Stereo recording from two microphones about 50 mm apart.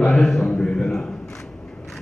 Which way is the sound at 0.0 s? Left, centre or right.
Centre.